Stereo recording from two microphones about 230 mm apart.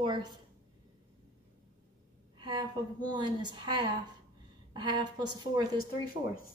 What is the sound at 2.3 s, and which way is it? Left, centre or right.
A woman's voice, centre.